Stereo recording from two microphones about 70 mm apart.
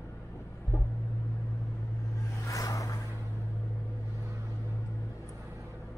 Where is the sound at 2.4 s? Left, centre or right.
Left.